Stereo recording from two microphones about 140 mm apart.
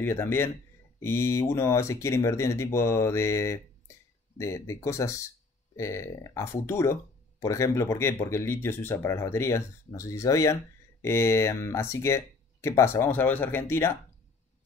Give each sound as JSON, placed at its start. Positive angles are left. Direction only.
{"t": 0.0, "sound": "speech", "side_deg": 15}